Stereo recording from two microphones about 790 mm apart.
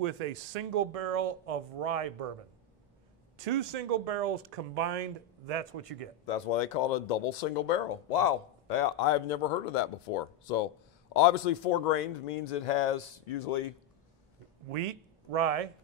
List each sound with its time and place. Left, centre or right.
0.0 s speech: right
3.3 s speech: right
6.2 s speech: left
11.1 s speech: left
14.7 s speech: right